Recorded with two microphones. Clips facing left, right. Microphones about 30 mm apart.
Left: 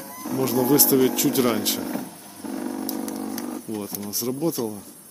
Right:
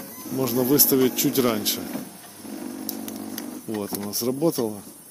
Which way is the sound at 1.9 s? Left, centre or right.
Centre.